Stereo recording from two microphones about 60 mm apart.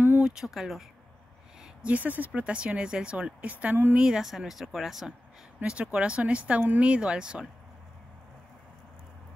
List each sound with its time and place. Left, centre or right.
0.2 s speech: centre
1.8 s speech: right
3.7 s speech: right
4.0 s speech: centre
5.6 s speech: centre